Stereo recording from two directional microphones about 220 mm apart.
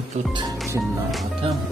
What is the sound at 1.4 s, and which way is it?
Speech, 25° right (ahead or behind).